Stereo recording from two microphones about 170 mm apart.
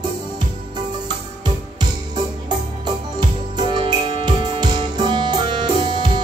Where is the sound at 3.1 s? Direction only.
25° right (ahead or behind).